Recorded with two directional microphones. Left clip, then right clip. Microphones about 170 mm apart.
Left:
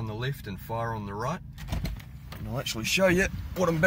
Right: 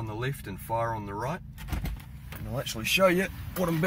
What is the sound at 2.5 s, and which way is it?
Speech, 20° left (ahead or behind).